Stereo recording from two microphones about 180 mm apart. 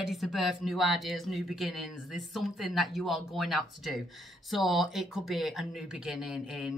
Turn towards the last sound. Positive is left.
turn(degrees=-5)  # may be behind; listen again after turning